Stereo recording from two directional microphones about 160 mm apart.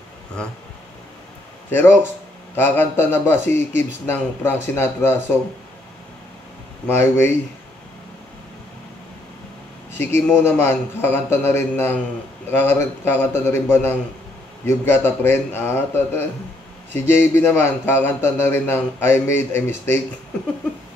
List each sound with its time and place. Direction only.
1.7 s a man's voice: 10° left (ahead or behind)
7.0 s a man's voice: 15° left (ahead or behind)
9.9 s a man's voice: 15° left (ahead or behind)